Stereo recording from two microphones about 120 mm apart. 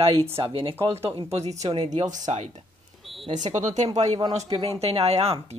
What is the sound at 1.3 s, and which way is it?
Speech, 65° right (ahead or behind).